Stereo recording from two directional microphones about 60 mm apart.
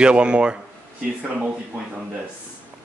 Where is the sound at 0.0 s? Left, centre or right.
Centre.